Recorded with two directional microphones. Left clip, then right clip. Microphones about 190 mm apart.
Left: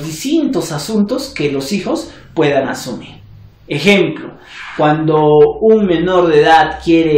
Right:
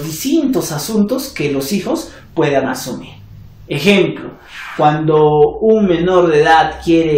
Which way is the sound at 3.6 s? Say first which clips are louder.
Left 1 dB; 20° left (ahead or behind).